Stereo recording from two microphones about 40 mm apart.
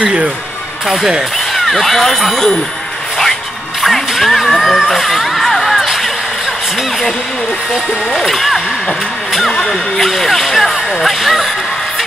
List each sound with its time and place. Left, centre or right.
0.0 s speech: right
0.8 s speech: centre
4.3 s a sound: centre
4.6 s music: centre
8.3 s speech: centre
10.0 s speech: centre